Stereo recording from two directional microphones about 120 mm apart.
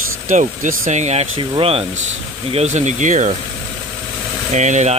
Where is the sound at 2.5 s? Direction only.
80° right.